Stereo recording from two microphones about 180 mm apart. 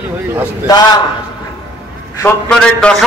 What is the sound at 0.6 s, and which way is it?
Speech, 20° left (ahead or behind).